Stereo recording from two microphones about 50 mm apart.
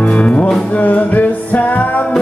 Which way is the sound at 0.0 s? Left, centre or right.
Left.